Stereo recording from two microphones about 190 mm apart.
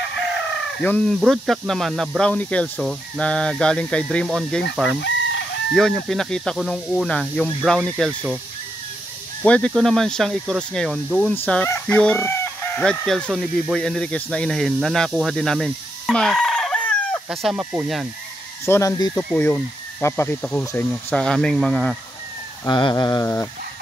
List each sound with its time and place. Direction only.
0.8 s speech: 5° left (ahead or behind)
5.0 s chicken: 70° left (ahead or behind)
5.8 s speech: centre (ahead or behind)
9.4 s speech: 5° left (ahead or behind)
18.7 s speech: 15° left (ahead or behind)
22.7 s a sound: 25° left (ahead or behind)